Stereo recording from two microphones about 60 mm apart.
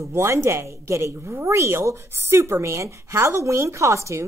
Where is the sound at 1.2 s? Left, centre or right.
Right.